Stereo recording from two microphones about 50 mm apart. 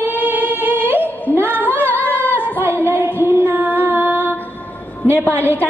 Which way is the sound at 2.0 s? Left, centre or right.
Left.